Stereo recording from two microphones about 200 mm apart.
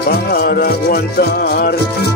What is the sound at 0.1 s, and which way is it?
Music, 50° left (ahead or behind).